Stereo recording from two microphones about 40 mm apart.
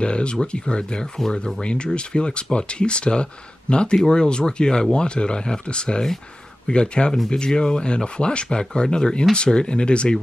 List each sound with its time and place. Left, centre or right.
0.0 s speech: left